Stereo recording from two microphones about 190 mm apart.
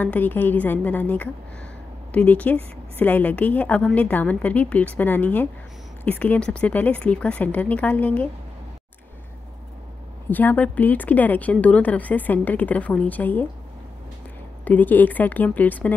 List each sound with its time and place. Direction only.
0.0 s a woman's voice: 10° left (ahead or behind)
10.3 s a woman's voice: 10° left (ahead or behind)
14.6 s a woman's voice: 10° left (ahead or behind)